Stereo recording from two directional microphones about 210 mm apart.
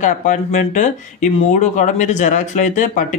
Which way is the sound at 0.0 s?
35° left (ahead or behind).